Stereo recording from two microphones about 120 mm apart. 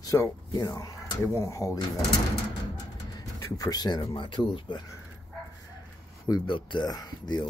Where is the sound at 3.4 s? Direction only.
30° left (ahead or behind).